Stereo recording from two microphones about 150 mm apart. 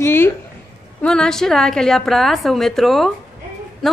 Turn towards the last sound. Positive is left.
turn(degrees=0)  # may be behind; listen again after turning